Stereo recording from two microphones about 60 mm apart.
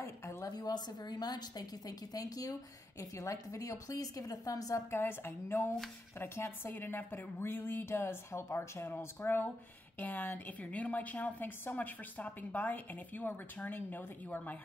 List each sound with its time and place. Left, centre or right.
0.0 s a sound: left
1.2 s a woman's voice: left
3.0 s a woman's voice: left
4.9 s a woman's voice: left